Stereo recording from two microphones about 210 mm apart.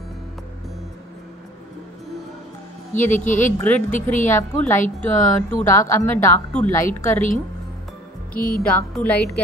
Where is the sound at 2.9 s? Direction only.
35° left (ahead or behind).